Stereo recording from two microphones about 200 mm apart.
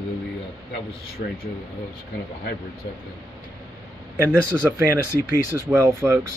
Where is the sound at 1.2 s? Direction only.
45° left (ahead or behind).